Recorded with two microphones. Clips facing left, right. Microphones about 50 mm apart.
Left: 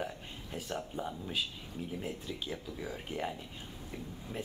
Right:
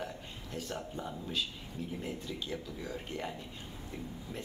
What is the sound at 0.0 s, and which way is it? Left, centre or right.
Speech, centre.